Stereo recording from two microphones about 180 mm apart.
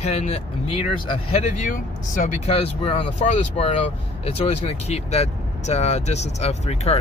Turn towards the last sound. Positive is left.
turn(degrees=35)  # may be behind; listen again after turning